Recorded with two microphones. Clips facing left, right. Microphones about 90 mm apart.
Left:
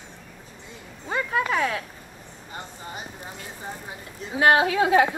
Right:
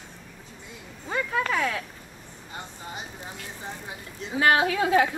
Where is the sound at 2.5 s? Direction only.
Centre (ahead or behind).